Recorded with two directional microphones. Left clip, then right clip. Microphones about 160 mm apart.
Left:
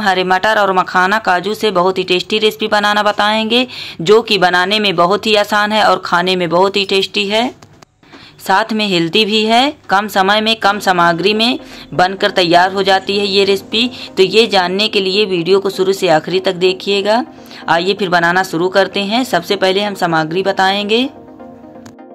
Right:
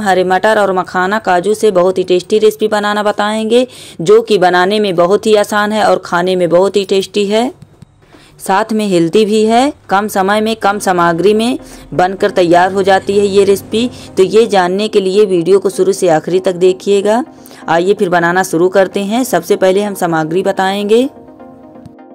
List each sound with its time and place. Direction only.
0.0 s speech: 45° right (ahead or behind)